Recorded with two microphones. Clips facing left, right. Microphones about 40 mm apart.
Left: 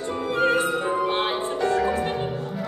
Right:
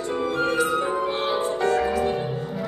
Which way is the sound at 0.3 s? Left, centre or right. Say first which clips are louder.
Left 2 dB; left.